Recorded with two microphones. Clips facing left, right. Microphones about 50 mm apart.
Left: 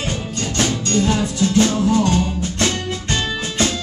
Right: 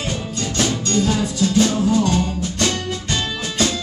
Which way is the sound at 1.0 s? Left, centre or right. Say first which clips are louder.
Left 1 dB; centre.